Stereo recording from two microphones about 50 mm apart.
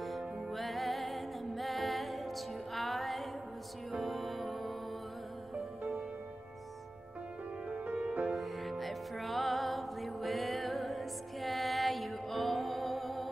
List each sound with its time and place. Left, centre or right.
0.0 s music: centre
8.1 s music: right
8.4 s music: centre